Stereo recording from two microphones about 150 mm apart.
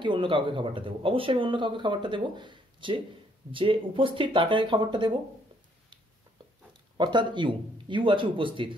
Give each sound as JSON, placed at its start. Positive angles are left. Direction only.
{"t": 0.0, "sound": "speech", "side_deg": -35}
{"t": 7.0, "sound": "speech", "side_deg": -30}